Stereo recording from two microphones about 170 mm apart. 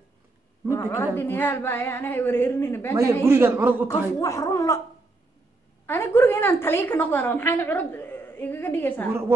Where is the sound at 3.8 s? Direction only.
20° left (ahead or behind).